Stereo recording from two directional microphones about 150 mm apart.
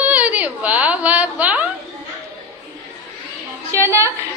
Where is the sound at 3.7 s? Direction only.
15° right (ahead or behind).